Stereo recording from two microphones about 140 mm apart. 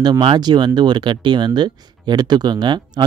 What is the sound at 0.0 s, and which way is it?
Speech, 35° right (ahead or behind).